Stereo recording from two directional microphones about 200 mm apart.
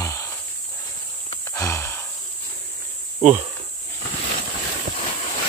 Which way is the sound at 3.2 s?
35° right (ahead or behind).